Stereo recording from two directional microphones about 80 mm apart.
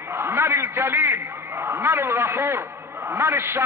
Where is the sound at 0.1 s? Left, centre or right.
Right.